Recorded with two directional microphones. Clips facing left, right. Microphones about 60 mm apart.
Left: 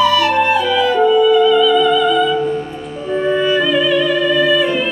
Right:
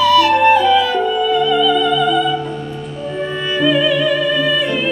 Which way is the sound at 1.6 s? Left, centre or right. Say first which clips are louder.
Left 2 dB; centre.